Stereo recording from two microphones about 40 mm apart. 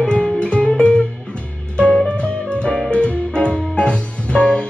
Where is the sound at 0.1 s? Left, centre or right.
Left.